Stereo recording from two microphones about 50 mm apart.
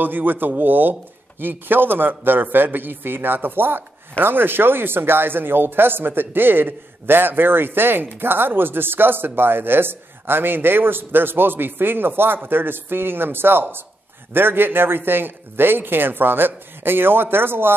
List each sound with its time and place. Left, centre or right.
0.0 s speech: right